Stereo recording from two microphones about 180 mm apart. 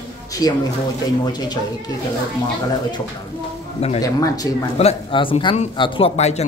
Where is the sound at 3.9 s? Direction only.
20° left (ahead or behind).